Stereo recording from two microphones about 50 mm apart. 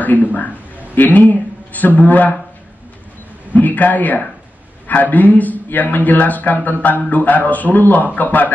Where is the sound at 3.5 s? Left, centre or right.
Left.